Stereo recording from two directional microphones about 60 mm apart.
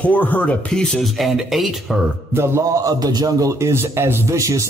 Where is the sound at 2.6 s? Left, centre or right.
Right.